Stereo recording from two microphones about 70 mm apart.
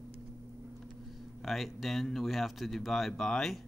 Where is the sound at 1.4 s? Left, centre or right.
Centre.